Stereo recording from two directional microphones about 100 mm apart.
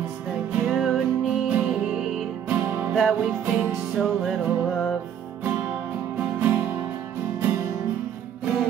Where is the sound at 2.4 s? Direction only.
15° right (ahead or behind).